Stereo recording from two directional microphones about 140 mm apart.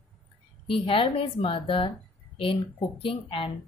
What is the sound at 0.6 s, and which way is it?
A woman's voice, 40° left (ahead or behind).